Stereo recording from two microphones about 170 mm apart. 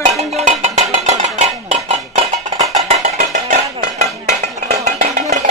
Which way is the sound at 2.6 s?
45° right (ahead or behind).